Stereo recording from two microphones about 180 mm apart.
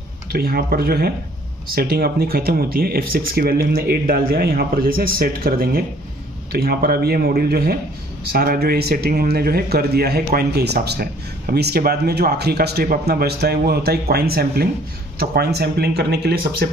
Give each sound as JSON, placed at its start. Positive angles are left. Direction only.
{"t": 0.3, "sound": "speech", "side_deg": -60}